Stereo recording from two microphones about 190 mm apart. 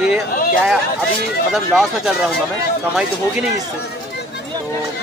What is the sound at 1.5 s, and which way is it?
Speech, centre (ahead or behind).